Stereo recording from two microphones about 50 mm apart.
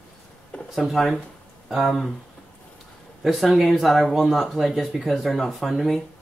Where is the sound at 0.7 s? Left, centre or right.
Centre.